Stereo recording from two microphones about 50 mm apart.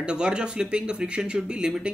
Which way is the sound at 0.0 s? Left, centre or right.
Centre.